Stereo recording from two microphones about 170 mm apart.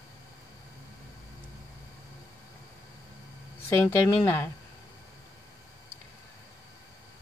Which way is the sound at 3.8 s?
15° left (ahead or behind).